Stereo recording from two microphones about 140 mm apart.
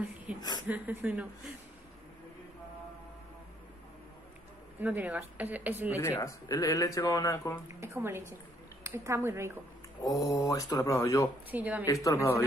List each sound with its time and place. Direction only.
0.7 s a woman's voice: 10° right (ahead or behind)
4.7 s a woman's voice: 10° right (ahead or behind)
5.9 s speech: 20° left (ahead or behind)
7.6 s a woman's voice: 20° right (ahead or behind)
10.0 s speech: 25° left (ahead or behind)
11.5 s a woman's voice: 10° right (ahead or behind)
11.8 s speech: 25° left (ahead or behind)